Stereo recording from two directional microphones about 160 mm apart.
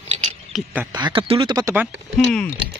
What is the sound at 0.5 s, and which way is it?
Speech, centre (ahead or behind).